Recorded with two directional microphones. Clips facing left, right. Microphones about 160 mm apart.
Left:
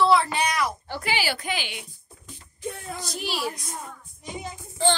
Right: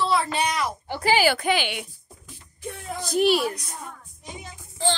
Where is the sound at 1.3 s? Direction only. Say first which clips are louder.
Right 7 dB; 75° right (ahead or behind).